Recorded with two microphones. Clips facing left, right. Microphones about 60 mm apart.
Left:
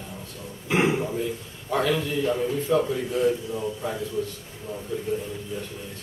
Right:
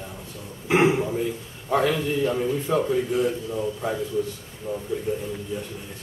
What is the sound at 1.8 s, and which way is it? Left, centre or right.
A man's voice, centre.